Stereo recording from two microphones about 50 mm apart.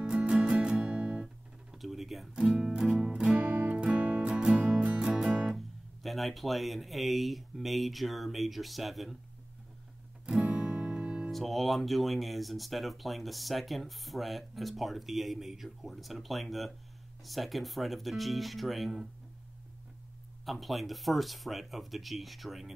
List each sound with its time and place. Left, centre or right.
0.0 s music: centre
1.2 s music: centre
3.1 s music: right
6.0 s speech: centre
10.5 s music: right
11.3 s speech: centre
20.4 s speech: centre